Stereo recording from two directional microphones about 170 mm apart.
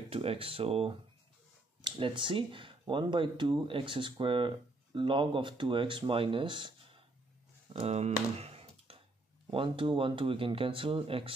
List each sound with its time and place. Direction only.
0.1 s speech: 35° right (ahead or behind)
7.8 s computer keyboard: 40° right (ahead or behind)
9.5 s speech: 30° right (ahead or behind)